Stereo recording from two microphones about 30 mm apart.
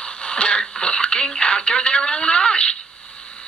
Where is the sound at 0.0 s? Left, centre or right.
Left.